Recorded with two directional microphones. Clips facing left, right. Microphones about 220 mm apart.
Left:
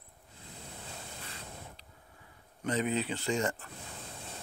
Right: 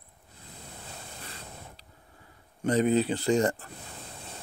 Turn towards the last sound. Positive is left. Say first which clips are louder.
# right 7 dB
turn(degrees=-35)  # may be behind; listen again after turning